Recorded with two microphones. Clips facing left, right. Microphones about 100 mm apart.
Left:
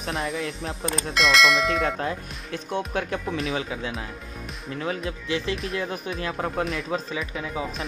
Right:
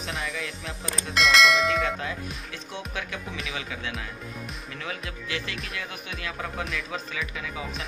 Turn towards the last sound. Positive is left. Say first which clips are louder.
# left 4 dB
turn(degrees=30)  # may be behind; listen again after turning